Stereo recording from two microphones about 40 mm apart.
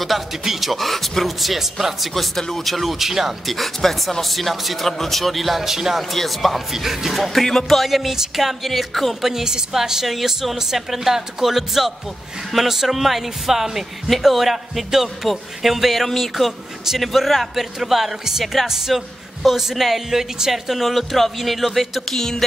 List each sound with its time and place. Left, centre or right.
0.0 s speech: centre
2.3 s speech: centre
3.4 s speech: centre
6.1 s speech: centre
9.3 s a woman's voice: centre
18.7 s speech: centre
22.1 s music: centre